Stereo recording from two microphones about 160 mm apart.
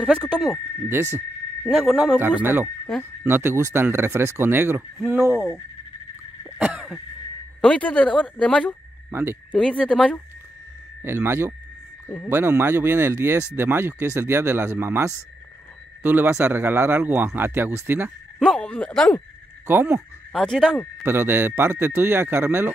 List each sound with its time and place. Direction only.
0.0 s speech: centre (ahead or behind)
2.1 s speech: 15° right (ahead or behind)
6.6 s cough: 5° right (ahead or behind)
7.6 s speech: 10° left (ahead or behind)
9.1 s speech: 15° right (ahead or behind)
9.5 s speech: 5° left (ahead or behind)
11.0 s speech: 15° right (ahead or behind)
18.4 s speech: 5° left (ahead or behind)
19.7 s speech: 15° right (ahead or behind)
20.3 s speech: centre (ahead or behind)
21.0 s speech: 15° right (ahead or behind)